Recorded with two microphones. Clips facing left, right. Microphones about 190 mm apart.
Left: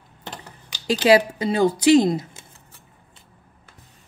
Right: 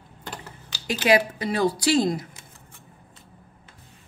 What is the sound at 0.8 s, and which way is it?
Speech, 25° left (ahead or behind).